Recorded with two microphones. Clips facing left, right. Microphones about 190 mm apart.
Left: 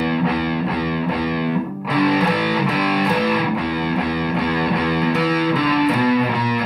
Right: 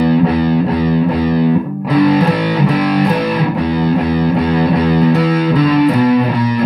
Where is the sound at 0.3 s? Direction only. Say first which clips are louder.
Right 8 dB; 35° right (ahead or behind).